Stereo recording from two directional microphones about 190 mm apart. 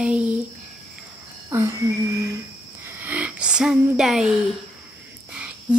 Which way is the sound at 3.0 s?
10° right (ahead or behind).